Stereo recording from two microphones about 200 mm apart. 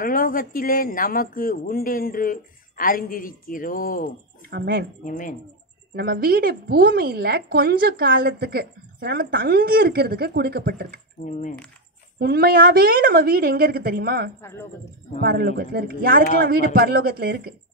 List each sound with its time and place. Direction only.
0.0 s speech: 45° left (ahead or behind)
4.5 s speech: 50° right (ahead or behind)
5.0 s speech: 40° left (ahead or behind)
5.9 s speech: 50° right (ahead or behind)
12.2 s speech: 50° right (ahead or behind)
14.4 s speech: 15° left (ahead or behind)
15.1 s speech: 50° right (ahead or behind)